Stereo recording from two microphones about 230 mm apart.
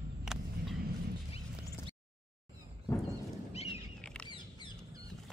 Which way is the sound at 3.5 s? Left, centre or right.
Left.